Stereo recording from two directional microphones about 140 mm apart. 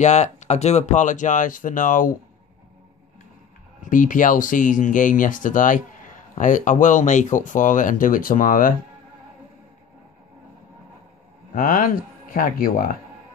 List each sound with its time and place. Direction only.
0.0 s speech: 55° left (ahead or behind); by 2.1 s 70° left (ahead or behind)
3.9 s speech: 70° left (ahead or behind)
11.5 s speech: 80° left